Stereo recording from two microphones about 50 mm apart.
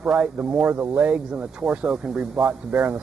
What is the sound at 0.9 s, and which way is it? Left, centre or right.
Speech, right.